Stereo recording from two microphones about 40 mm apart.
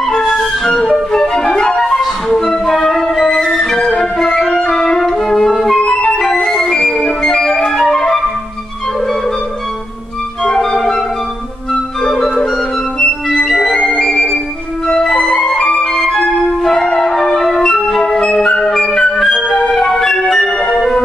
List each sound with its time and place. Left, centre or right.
0.7 s flute: centre
1.9 s music: centre
4.0 s flute: centre
5.8 s music: left
6.3 s music: centre
7.3 s flute: centre
10.4 s music: centre
11.7 s organ: centre
13.0 s music: left
13.5 s music: centre
17.3 s flute: centre
18.6 s music: centre
20.5 s music: left